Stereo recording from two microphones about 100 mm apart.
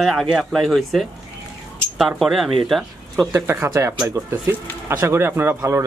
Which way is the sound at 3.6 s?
30° right (ahead or behind).